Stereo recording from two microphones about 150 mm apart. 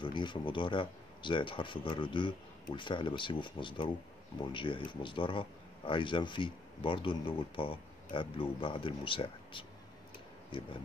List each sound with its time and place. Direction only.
0.0 s speech: 30° left (ahead or behind)